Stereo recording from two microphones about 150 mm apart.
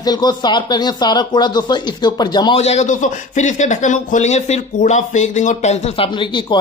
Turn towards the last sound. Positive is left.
turn(degrees=30)  # may be behind; listen again after turning